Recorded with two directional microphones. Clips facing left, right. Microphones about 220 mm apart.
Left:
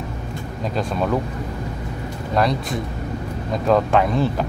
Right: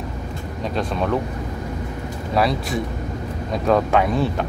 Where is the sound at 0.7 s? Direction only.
Centre (ahead or behind).